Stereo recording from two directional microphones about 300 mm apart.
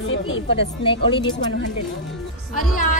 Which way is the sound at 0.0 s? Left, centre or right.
Left.